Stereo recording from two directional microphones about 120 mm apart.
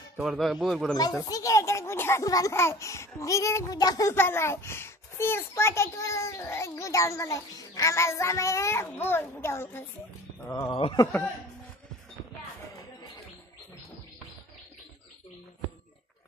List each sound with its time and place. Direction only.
0.2 s a man's voice: centre (ahead or behind)
1.2 s a child's voice: 30° left (ahead or behind)
4.1 s a child's voice: 20° left (ahead or behind)
10.7 s speech: 50° left (ahead or behind)